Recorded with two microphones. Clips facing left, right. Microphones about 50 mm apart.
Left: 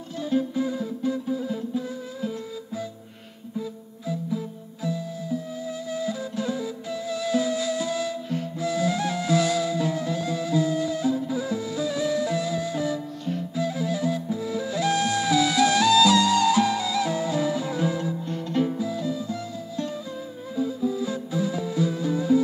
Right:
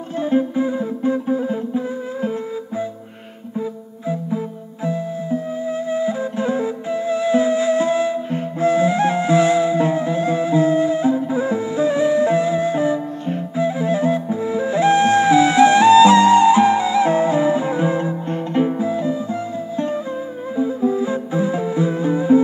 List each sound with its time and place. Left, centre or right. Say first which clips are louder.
0.2 s music: right 6 dB; right
4.8 s music: right 7 dB; right
20.5 s music: right 7 dB; right